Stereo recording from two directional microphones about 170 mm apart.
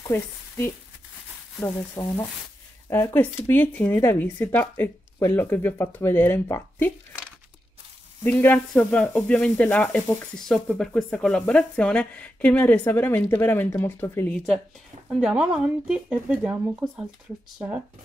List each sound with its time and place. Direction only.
1.6 s speech: 20° left (ahead or behind)
8.2 s speech: 10° left (ahead or behind)
15.1 s speech: 5° right (ahead or behind)